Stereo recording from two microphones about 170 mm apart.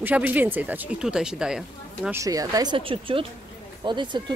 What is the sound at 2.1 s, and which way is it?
Speech, 20° right (ahead or behind).